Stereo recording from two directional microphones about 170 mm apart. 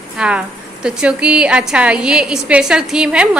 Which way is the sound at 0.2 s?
5° right (ahead or behind).